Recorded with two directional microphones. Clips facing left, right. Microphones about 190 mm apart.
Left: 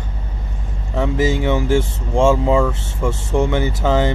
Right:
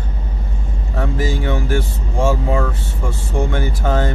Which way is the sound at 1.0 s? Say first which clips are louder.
Left 4 dB; 20° left (ahead or behind).